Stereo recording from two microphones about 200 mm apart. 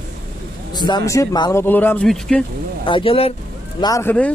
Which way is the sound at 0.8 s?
20° left (ahead or behind).